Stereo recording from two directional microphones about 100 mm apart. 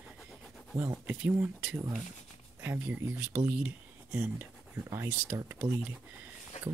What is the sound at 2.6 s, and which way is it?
Speech, 20° right (ahead or behind).